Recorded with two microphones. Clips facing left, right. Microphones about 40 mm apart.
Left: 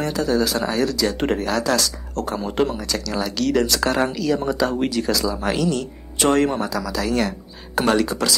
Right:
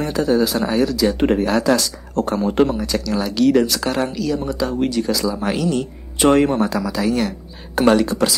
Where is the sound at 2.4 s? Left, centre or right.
Centre.